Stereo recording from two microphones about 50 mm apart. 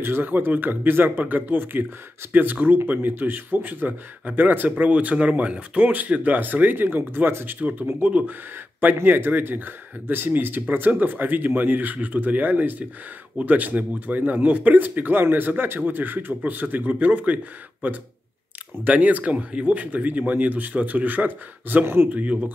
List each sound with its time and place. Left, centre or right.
0.0 s a man's voice: right
18.9 s a man's voice: right
21.8 s speech: right
22.1 s a man's voice: right